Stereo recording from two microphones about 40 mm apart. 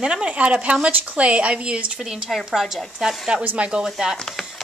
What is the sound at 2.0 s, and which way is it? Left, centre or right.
A woman's voice, centre.